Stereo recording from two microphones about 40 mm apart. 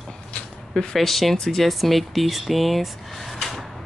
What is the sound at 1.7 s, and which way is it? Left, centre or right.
Speech, centre.